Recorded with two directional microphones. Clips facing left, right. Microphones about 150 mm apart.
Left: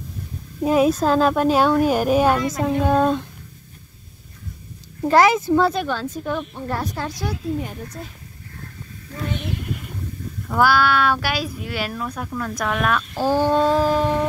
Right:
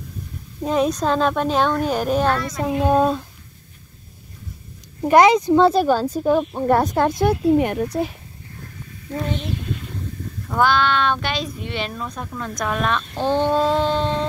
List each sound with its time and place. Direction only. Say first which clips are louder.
0.6 s a woman's voice: left 3 dB; 5° left (ahead or behind)
2.6 s a child's voice: right 2 dB; 15° right (ahead or behind)
5.0 s a child's voice: right 2 dB; 20° right (ahead or behind)
5.7 s speech: right 7 dB; 40° right (ahead or behind)
6.7 s a woman's voice: right 10 dB; 50° right (ahead or behind); by 8.1 s 70° right (ahead or behind)
10.5 s speech: left 1 dB; 5° left (ahead or behind)